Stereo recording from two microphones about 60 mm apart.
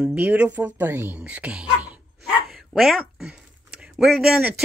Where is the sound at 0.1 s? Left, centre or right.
Right.